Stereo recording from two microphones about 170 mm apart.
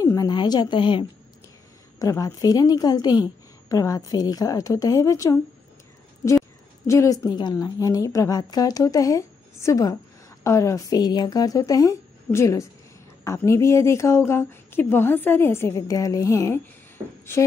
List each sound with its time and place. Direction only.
0.0 s a sound: 20° left (ahead or behind)
2.0 s a woman's voice: 20° left (ahead or behind)
6.9 s a woman's voice: 20° left (ahead or behind)